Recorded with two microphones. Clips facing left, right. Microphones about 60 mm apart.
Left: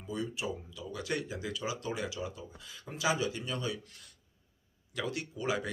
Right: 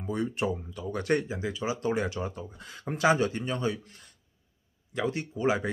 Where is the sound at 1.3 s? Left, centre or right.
Right.